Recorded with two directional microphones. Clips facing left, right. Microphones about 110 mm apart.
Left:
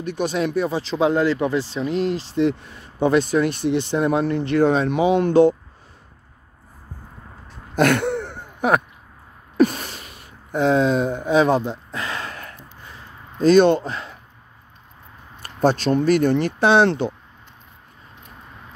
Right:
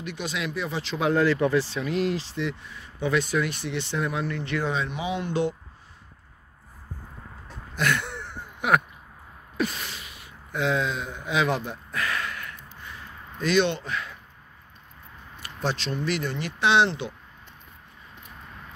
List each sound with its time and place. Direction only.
0.0 s speech: 45° left (ahead or behind)
3.2 s speech: 30° left (ahead or behind)
3.7 s speech: 45° left (ahead or behind)
7.7 s throat clearing: 55° left (ahead or behind); by 8.8 s 35° left (ahead or behind)
9.6 s gasp: 40° left (ahead or behind)
15.4 s speech: 45° left (ahead or behind)